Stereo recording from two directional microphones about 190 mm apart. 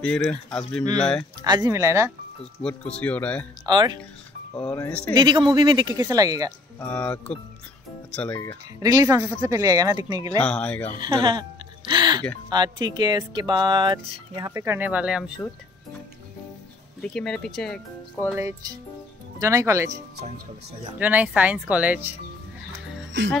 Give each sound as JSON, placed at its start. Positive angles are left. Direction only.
{"t": 0.3, "sound": "speech", "side_deg": 5}
{"t": 1.4, "sound": "speech", "side_deg": -20}
{"t": 2.6, "sound": "speech", "side_deg": 5}
{"t": 3.6, "sound": "speech", "side_deg": -20}
{"t": 4.6, "sound": "speech", "side_deg": 5}
{"t": 5.1, "sound": "speech", "side_deg": -25}
{"t": 6.8, "sound": "speech", "side_deg": 10}
{"t": 8.7, "sound": "speech", "side_deg": -20}
{"t": 10.4, "sound": "speech", "side_deg": 5}
{"t": 11.0, "sound": "speech", "side_deg": -25}
{"t": 17.0, "sound": "speech", "side_deg": 5}
{"t": 18.2, "sound": "speech", "side_deg": -15}
{"t": 21.0, "sound": "speech", "side_deg": -10}